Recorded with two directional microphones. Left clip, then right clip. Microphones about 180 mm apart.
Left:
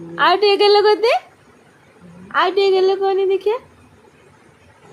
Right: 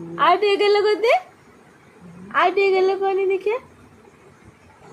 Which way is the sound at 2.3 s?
10° left (ahead or behind).